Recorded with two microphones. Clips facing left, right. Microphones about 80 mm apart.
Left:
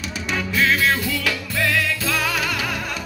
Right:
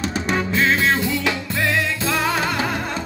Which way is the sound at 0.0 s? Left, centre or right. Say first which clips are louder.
Right 4 dB; right.